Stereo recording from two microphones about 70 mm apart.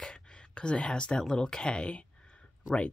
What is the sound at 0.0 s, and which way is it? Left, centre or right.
Speech, centre.